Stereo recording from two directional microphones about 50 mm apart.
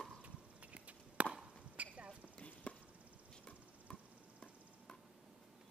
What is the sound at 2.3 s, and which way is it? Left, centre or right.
Chop, left.